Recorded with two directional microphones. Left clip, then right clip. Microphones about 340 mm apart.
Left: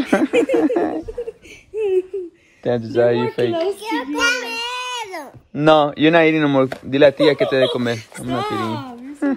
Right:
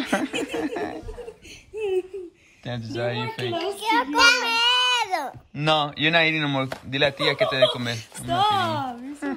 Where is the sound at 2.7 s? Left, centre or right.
Centre.